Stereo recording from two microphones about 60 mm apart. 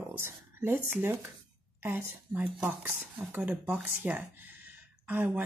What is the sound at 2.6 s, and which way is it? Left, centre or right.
Speech, right.